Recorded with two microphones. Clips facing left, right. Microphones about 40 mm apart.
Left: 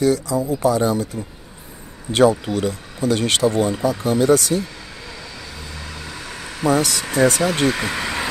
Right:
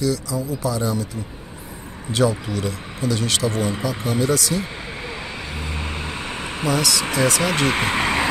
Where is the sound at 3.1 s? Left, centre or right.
Left.